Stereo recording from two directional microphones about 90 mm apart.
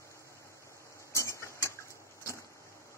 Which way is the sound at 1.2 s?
35° left (ahead or behind).